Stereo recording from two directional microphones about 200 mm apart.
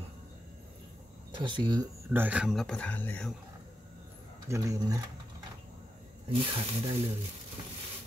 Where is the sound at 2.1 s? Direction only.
5° right (ahead or behind).